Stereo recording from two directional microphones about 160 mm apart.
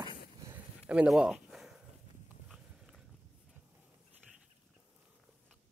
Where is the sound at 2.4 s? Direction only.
Centre (ahead or behind).